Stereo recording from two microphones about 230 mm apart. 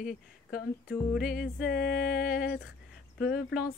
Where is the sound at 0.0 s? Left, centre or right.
Left.